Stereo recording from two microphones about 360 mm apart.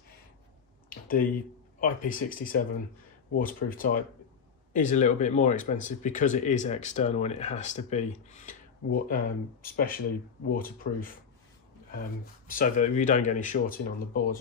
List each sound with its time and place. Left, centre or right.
0.8 s a sound: left
1.8 s speech: left
12.4 s speech: left